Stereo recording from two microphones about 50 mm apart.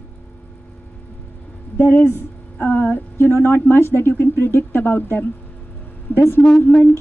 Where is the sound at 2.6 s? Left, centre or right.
Left.